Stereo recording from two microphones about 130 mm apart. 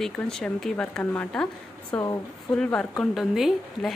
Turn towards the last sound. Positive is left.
turn(degrees=0)  # may be behind; listen again after turning